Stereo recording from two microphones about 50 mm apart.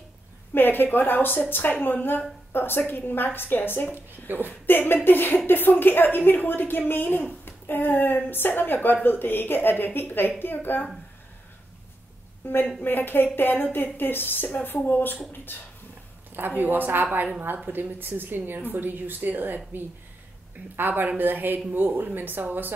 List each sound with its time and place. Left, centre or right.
0.6 s a woman's voice: left
3.9 s a woman's voice: right
4.6 s a woman's voice: left
12.4 s a woman's voice: left
16.3 s a woman's voice: right